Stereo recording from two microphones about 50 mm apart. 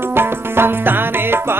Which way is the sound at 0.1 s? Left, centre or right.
Right.